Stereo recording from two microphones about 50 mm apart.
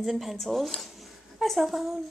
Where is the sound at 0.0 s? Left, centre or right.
Centre.